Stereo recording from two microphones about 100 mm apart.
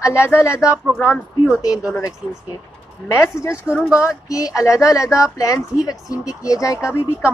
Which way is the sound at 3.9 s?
30° left (ahead or behind).